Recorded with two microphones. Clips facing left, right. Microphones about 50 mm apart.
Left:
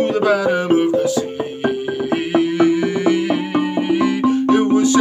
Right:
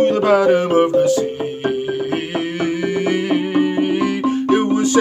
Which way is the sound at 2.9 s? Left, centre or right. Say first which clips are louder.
Left 1 dB; right.